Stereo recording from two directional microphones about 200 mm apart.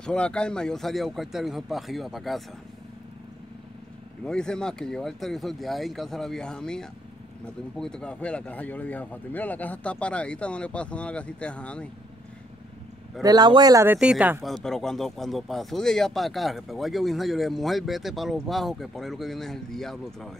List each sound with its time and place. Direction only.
0.0 s speech: 5° left (ahead or behind)
4.2 s speech: 5° left (ahead or behind)
13.2 s speech: 20° right (ahead or behind)
13.9 s speech: 5° right (ahead or behind)